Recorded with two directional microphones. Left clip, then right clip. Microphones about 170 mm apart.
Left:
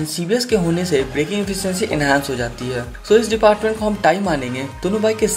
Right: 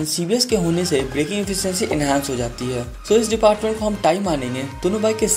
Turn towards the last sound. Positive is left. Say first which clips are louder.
# left 1 dB
turn(degrees=-25)  # may be behind; listen again after turning